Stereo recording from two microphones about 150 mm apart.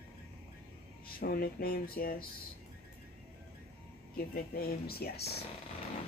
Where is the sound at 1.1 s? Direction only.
85° left.